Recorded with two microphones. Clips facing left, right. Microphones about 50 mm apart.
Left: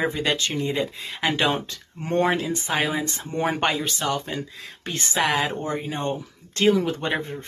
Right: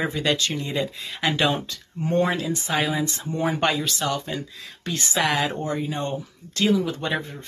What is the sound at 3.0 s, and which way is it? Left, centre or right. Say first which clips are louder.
Speech: right 1 dB; left.